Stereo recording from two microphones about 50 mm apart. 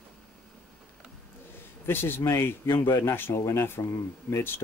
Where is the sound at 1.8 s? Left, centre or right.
Left.